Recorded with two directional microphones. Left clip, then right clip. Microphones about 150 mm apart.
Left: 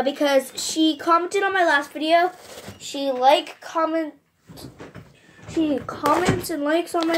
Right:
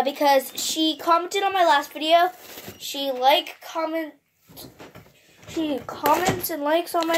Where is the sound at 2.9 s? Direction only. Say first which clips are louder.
Left 2 dB; 40° right (ahead or behind).